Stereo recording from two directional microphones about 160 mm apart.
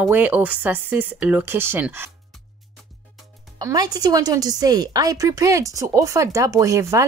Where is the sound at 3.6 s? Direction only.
20° right (ahead or behind).